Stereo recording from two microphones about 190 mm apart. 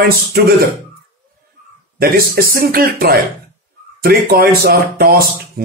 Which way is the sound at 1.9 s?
50° right (ahead or behind).